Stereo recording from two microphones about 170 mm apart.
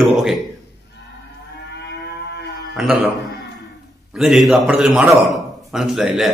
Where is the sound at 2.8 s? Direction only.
5° right (ahead or behind).